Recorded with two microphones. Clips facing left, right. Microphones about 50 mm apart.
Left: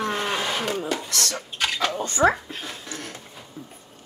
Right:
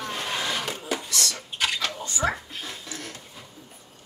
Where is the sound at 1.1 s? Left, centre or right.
Left.